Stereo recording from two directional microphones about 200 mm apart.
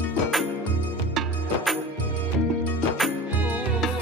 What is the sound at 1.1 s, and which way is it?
Music, centre (ahead or behind).